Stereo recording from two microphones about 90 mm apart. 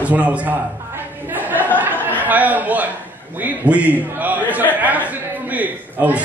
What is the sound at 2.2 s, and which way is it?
A man's voice, 20° right (ahead or behind).